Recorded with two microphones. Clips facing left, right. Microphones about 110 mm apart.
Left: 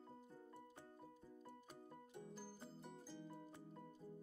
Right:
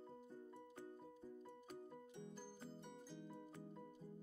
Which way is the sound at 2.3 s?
5° left (ahead or behind).